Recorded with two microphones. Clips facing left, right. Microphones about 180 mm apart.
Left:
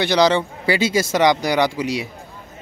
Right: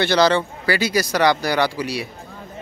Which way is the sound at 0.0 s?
15° left (ahead or behind).